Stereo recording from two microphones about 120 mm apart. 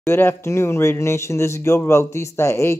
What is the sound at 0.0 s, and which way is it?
Speech, 20° left (ahead or behind).